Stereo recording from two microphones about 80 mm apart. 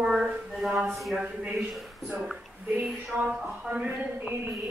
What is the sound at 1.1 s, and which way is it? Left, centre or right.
Speech, centre.